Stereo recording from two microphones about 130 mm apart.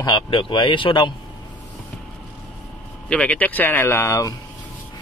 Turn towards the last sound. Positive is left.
turn(degrees=20)  # may be behind; listen again after turning